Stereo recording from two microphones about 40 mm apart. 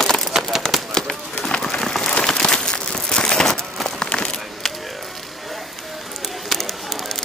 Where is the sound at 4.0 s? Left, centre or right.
Left.